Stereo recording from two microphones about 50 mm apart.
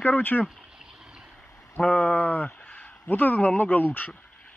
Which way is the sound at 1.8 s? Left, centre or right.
Left.